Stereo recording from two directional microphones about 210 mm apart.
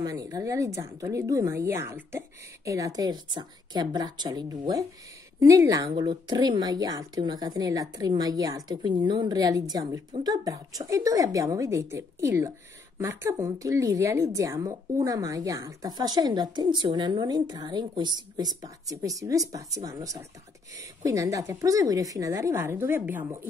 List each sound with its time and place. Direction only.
0.0 s a woman's voice: 15° right (ahead or behind)